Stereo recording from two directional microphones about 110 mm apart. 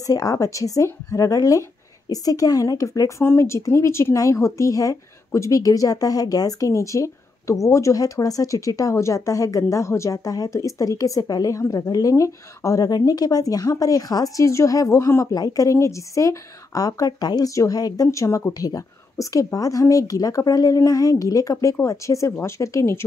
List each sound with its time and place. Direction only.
0.0 s a woman's voice: 35° left (ahead or behind)